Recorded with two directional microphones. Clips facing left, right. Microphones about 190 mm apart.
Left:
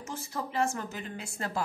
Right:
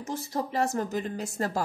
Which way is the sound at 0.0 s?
35° right (ahead or behind).